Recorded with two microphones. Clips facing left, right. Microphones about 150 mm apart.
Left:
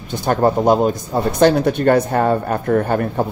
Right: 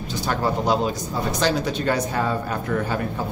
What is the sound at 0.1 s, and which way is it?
Speech, 55° left (ahead or behind).